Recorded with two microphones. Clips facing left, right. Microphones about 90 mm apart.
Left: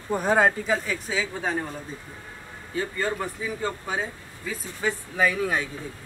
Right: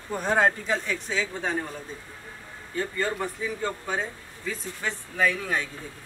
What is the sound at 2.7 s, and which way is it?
Speech, 5° left (ahead or behind).